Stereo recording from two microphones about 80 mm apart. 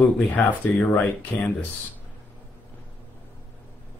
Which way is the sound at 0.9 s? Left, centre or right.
Left.